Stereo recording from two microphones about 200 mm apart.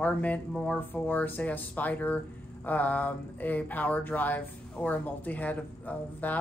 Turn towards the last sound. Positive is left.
turn(degrees=10)  # may be behind; listen again after turning